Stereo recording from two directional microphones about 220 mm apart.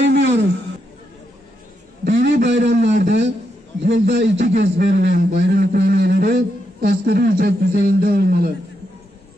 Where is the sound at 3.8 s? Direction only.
55° right (ahead or behind).